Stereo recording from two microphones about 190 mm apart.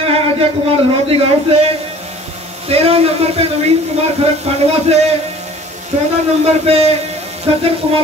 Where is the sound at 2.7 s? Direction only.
30° right (ahead or behind).